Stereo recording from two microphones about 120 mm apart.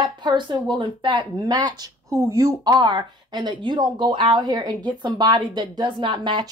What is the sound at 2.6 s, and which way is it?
A woman's voice, 40° right (ahead or behind).